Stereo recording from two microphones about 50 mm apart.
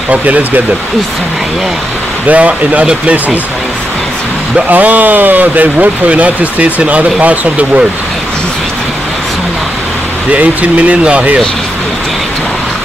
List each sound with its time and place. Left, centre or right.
0.1 s speech: right
2.2 s speech: right
4.6 s speech: right
10.3 s speech: right